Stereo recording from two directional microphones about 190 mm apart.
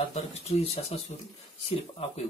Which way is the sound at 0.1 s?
35° left (ahead or behind).